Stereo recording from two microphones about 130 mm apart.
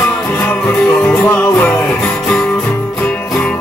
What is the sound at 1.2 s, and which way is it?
Music, 15° left (ahead or behind).